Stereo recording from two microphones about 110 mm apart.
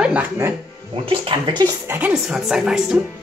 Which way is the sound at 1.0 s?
50° right (ahead or behind).